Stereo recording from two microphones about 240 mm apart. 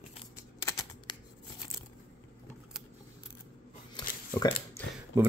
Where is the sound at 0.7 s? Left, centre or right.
Centre.